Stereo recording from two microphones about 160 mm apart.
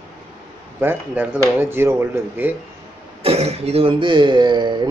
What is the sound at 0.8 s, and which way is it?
Speech, 10° right (ahead or behind).